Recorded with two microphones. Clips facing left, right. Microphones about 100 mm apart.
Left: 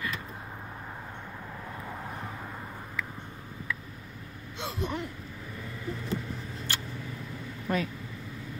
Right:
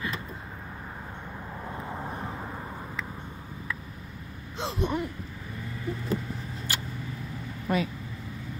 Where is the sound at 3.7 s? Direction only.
40° right (ahead or behind).